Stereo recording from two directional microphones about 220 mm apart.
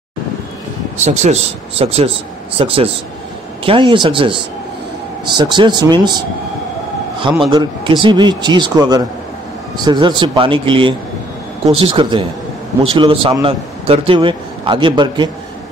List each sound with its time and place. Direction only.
1.0 s a man's voice: 30° right (ahead or behind)